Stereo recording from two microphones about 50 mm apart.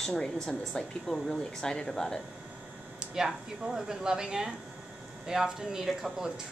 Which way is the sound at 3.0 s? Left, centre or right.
Centre.